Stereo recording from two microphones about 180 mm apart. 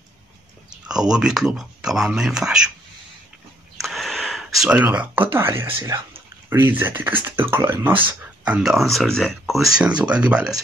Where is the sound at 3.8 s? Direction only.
Centre (ahead or behind).